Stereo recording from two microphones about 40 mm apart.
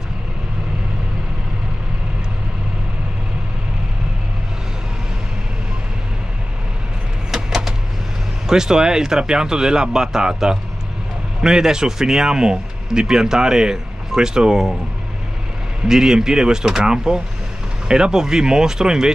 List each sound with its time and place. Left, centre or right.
7.3 s a sound: centre
8.5 s speech: centre
15.9 s speech: centre